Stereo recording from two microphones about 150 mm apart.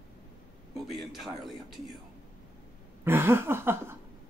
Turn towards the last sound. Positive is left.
turn(degrees=-15)  # may be behind; listen again after turning